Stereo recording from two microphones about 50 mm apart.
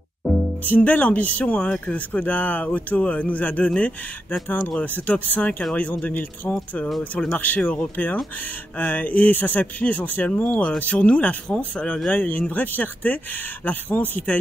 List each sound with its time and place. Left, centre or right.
0.7 s speech: left